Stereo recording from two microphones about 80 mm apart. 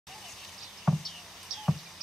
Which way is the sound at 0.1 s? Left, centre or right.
Centre.